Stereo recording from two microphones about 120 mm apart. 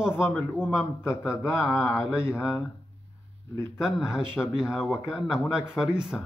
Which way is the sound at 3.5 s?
20° left (ahead or behind).